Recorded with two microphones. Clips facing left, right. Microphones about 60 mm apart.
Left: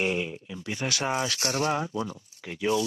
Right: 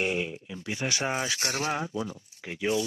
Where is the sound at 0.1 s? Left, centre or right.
Centre.